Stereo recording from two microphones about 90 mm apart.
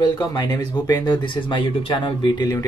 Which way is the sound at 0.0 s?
45° left (ahead or behind).